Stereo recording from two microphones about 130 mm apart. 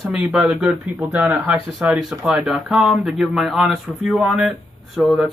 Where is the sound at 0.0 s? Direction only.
5° right (ahead or behind).